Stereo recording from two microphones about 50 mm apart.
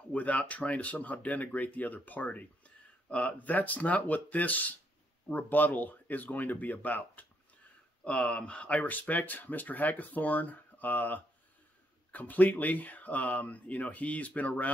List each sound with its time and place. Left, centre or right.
0.1 s speech: left
8.0 s speech: centre